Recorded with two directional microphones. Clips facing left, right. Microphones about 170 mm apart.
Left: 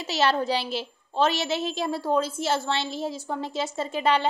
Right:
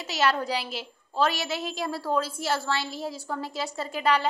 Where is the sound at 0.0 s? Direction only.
30° left (ahead or behind).